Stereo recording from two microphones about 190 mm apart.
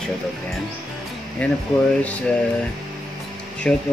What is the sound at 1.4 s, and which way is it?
Speech, 5° left (ahead or behind).